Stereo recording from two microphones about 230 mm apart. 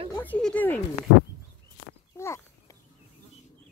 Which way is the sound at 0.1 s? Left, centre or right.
Centre.